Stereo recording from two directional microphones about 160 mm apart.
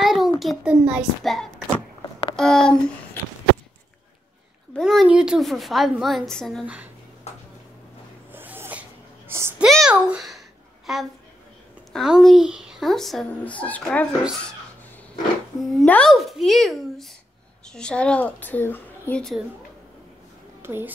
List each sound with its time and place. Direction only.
0.0 s a sound: centre (ahead or behind)
0.4 s a woman's voice: 5° right (ahead or behind)
4.7 s a woman's voice: centre (ahead or behind)
8.3 s a sound: 15° right (ahead or behind)
9.3 s a child's voice: 15° right (ahead or behind)
9.7 s a child's voice: centre (ahead or behind)
15.6 s a woman's voice: centre (ahead or behind)
20.6 s a woman's voice: 15° right (ahead or behind)